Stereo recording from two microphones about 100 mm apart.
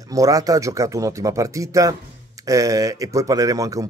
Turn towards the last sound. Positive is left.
turn(degrees=-35)  # may be behind; listen again after turning